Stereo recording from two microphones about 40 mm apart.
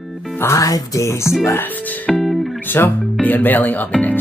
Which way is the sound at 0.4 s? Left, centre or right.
Left.